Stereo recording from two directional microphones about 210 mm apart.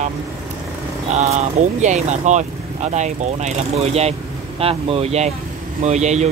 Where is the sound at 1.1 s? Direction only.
35° right (ahead or behind).